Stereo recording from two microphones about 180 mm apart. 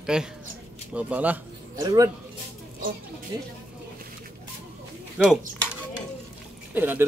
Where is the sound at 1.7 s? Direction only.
20° right (ahead or behind).